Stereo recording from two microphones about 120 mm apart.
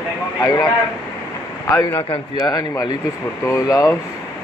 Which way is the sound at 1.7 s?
20° left (ahead or behind).